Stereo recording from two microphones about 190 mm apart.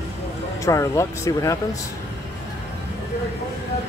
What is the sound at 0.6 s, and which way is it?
Speech, 15° left (ahead or behind).